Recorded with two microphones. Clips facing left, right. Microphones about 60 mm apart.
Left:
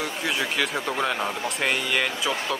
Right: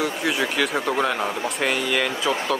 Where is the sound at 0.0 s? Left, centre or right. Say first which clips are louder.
Right 4 dB; centre.